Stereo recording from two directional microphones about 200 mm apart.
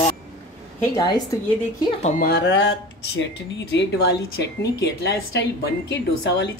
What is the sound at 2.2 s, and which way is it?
A woman's voice, 60° left (ahead or behind).